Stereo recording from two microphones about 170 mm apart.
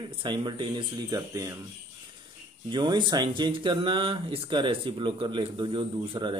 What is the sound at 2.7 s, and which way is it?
Speech, 25° right (ahead or behind).